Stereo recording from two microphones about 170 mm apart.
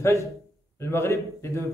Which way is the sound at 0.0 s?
15° left (ahead or behind).